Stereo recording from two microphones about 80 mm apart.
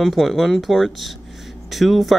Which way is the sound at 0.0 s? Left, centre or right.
Centre.